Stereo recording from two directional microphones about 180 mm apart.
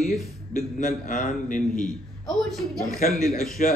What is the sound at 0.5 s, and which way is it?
A man's voice, 40° left (ahead or behind).